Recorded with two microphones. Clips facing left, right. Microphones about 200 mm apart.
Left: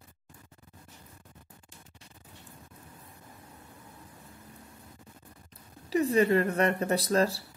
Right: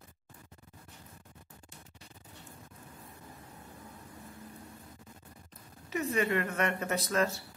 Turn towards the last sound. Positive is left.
turn(degrees=35)  # may be behind; listen again after turning